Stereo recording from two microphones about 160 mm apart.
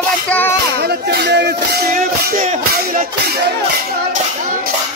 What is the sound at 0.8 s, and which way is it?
Music, 85° right.